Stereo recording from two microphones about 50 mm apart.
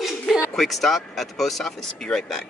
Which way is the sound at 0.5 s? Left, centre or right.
Centre.